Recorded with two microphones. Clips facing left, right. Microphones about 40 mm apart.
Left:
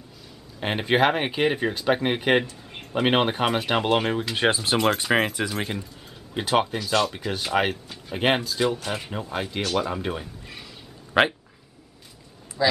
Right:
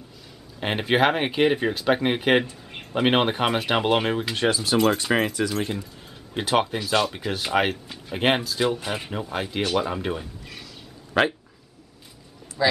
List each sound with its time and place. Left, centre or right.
0.6 s speech: centre
4.5 s speech: left
5.0 s speech: centre
6.3 s speech: centre
11.1 s speech: centre
12.6 s speech: centre